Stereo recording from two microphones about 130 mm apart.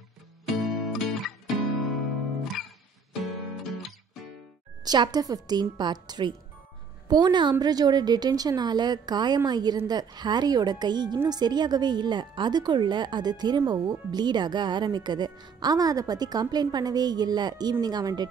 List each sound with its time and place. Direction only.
0.5 s music: centre (ahead or behind)
2.5 s music: centre (ahead or behind)
4.8 s speech: 35° right (ahead or behind)